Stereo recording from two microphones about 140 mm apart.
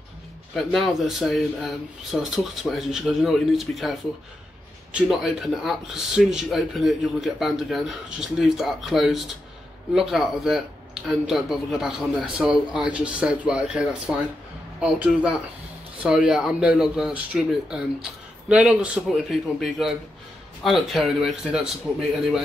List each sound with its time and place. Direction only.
0.6 s speech: centre (ahead or behind)
5.0 s speech: centre (ahead or behind)